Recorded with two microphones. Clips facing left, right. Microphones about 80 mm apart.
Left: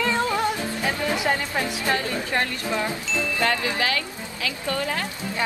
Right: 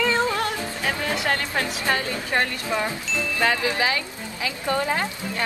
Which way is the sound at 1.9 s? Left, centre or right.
Right.